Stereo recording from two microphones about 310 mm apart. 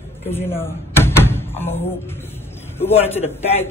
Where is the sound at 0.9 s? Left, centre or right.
Centre.